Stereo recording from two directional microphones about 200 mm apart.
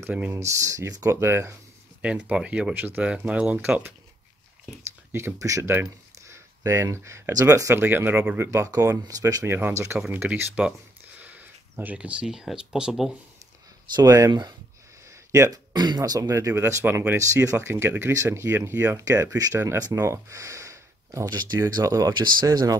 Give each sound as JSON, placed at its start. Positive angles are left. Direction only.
{"t": 0.0, "sound": "speech", "side_deg": -10}
{"t": 5.1, "sound": "speech", "side_deg": -15}
{"t": 13.9, "sound": "speech", "side_deg": -15}